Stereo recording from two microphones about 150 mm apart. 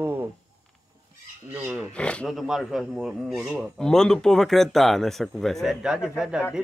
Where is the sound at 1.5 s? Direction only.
15° right (ahead or behind).